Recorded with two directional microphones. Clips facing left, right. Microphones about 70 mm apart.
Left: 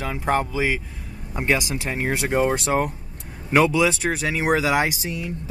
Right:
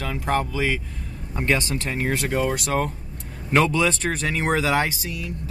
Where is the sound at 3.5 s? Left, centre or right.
Centre; by 5.3 s left.